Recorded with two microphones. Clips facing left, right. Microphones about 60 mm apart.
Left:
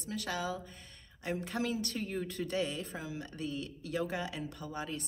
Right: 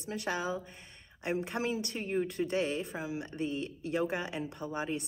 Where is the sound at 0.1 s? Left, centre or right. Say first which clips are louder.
Right 3 dB; right.